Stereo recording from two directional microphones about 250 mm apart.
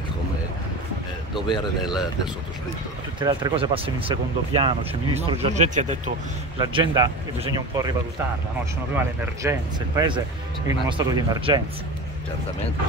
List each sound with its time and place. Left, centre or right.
3.2 s speech: centre
6.6 s speech: centre
8.9 s speech: centre